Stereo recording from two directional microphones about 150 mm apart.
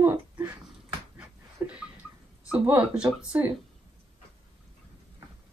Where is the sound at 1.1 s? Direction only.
10° right (ahead or behind).